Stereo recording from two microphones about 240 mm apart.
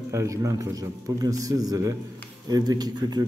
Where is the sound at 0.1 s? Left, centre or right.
Centre.